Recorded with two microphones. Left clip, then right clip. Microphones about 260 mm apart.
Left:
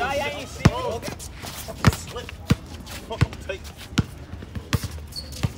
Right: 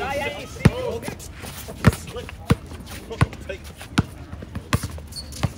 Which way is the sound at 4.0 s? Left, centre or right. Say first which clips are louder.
Right 3 dB; right.